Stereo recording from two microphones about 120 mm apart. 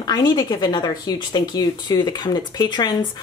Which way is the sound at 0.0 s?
35° left (ahead or behind).